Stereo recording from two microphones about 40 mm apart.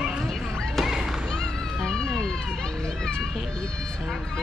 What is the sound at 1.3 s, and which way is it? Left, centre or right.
Cat, centre.